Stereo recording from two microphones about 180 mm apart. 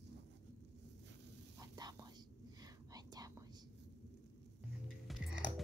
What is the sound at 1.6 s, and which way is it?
Whispering, 20° right (ahead or behind).